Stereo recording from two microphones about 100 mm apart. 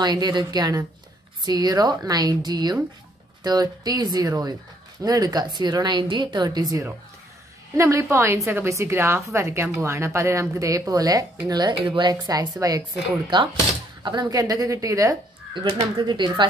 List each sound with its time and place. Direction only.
0.0 s a woman's voice: 45° right (ahead or behind)
7.7 s a woman's voice: 30° right (ahead or behind)
14.0 s a woman's voice: 50° right (ahead or behind)
14.3 s a woman's voice: 40° right (ahead or behind)
15.5 s a woman's voice: 50° right (ahead or behind)